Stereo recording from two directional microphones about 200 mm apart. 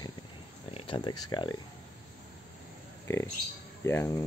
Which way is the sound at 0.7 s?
25° left (ahead or behind).